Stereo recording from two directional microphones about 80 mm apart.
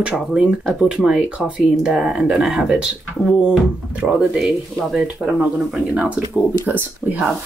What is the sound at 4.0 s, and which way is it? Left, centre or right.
Speech, centre.